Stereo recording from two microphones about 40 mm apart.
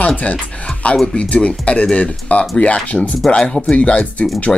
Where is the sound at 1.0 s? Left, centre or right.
Left.